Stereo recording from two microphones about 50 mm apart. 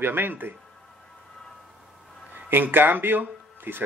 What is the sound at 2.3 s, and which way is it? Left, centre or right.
Speech, right.